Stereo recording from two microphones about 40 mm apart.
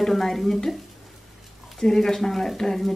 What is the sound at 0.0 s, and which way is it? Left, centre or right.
Speech, centre.